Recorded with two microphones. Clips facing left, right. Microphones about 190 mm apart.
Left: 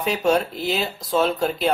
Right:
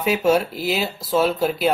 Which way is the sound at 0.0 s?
5° right (ahead or behind).